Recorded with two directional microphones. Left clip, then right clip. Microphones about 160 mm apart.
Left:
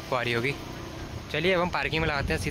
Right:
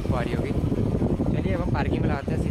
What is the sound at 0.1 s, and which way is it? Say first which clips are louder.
Speech: left 3 dB; 15° left (ahead or behind).